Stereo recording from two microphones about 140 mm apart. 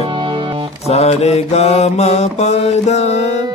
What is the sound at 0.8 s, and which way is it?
Mantra, 50° left (ahead or behind).